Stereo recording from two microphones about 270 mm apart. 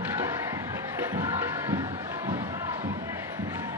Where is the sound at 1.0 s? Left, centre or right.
Centre.